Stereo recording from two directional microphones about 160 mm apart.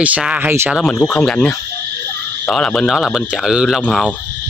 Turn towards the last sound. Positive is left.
turn(degrees=5)  # may be behind; listen again after turning